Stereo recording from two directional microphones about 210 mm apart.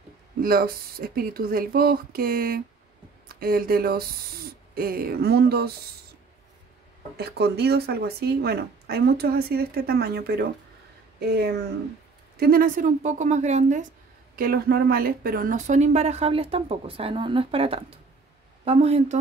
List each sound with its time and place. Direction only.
0.4 s speech: 45° right (ahead or behind)
7.2 s speech: 50° right (ahead or behind); by 13.8 s 35° right (ahead or behind)
14.3 s speech: 45° right (ahead or behind); by 19.1 s 30° right (ahead or behind)